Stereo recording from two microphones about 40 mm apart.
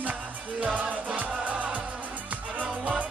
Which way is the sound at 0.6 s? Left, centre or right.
Right.